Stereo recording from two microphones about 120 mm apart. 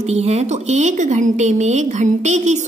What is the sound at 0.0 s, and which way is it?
A woman's voice, 65° right (ahead or behind).